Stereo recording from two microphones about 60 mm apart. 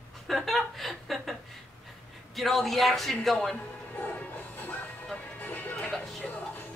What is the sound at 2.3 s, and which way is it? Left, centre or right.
Speech, centre.